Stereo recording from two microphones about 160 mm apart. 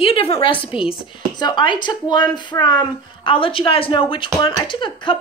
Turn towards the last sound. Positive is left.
turn(degrees=30)  # may be behind; listen again after turning